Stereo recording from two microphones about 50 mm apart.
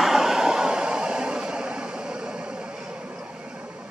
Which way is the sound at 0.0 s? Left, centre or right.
Centre.